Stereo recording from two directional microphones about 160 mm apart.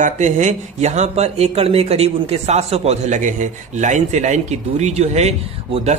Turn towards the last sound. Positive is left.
turn(degrees=-45)  # may be behind; listen again after turning